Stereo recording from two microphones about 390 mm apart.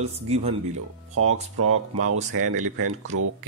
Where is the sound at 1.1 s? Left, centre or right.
Right.